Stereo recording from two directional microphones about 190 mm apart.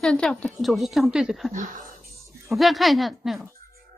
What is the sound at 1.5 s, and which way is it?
Speech, 45° right (ahead or behind).